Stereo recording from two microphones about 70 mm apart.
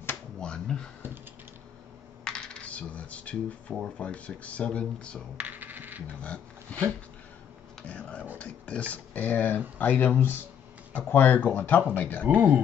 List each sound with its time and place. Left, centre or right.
0.1 s a sound: centre
2.2 s coin: centre
3.8 s speech: centre
5.4 s coin: right
6.2 s speech: centre
7.9 s printer: centre
8.4 s speech: centre
12.4 s speech: right